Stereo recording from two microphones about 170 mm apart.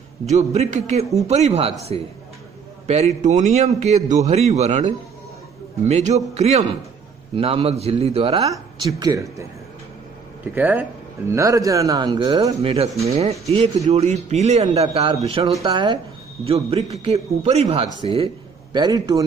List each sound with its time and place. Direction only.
0.3 s a man's voice: 40° right (ahead or behind)
5.9 s a man's voice: 40° right (ahead or behind)
9.0 s a man's voice: 20° right (ahead or behind)
13.0 s a man's voice: 40° right (ahead or behind); by 19.2 s 20° right (ahead or behind)